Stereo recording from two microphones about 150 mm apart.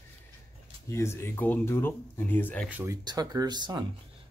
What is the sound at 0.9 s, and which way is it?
Speech, 15° left (ahead or behind).